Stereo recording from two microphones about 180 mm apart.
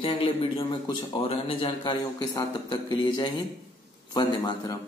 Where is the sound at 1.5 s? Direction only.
30° left (ahead or behind).